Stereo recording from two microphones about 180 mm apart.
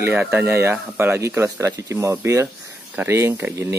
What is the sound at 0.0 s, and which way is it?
Speech, 10° right (ahead or behind).